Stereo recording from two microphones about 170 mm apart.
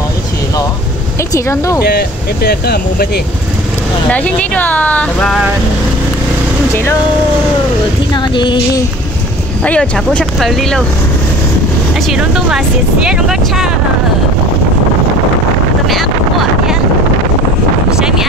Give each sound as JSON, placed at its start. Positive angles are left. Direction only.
{"t": 1.3, "sound": "speech", "side_deg": 20}
{"t": 1.9, "sound": "speech", "side_deg": 70}
{"t": 4.1, "sound": "speech", "side_deg": 10}
{"t": 6.7, "sound": "speech", "side_deg": 15}
{"t": 8.1, "sound": "music", "side_deg": 25}
{"t": 9.7, "sound": "speech", "side_deg": 5}
{"t": 12.1, "sound": "speech", "side_deg": -5}
{"t": 17.9, "sound": "a sound", "side_deg": -5}